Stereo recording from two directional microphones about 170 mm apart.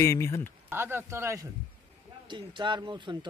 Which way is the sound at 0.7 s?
15° right (ahead or behind).